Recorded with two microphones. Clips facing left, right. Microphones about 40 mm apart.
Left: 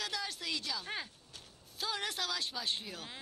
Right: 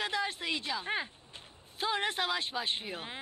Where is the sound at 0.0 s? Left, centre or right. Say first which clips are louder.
Right 6 dB; right.